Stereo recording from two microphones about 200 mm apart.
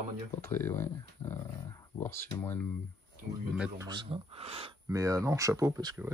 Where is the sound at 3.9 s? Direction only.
25° right (ahead or behind).